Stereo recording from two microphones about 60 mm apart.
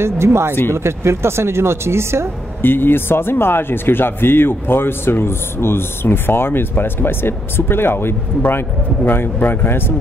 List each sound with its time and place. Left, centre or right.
0.0 s speech: right
2.6 s speech: left